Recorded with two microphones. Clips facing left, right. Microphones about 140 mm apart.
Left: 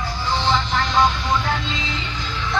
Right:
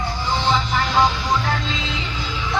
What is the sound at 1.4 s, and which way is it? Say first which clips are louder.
Vehicle: even; centre (ahead or behind).